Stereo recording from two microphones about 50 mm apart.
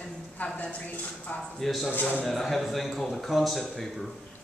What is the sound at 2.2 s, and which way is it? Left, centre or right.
Speech, centre.